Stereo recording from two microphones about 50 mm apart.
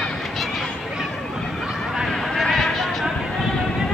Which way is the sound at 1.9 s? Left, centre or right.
Centre.